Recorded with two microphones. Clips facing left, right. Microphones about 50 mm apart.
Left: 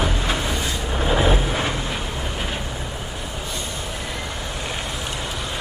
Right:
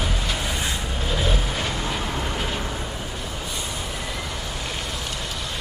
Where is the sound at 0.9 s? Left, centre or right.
Left.